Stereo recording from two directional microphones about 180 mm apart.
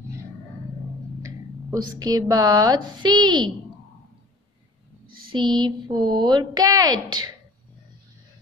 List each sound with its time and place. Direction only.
1.2 s speech: 20° right (ahead or behind)
5.0 s a sound: 55° right (ahead or behind)
5.3 s speech: 25° right (ahead or behind)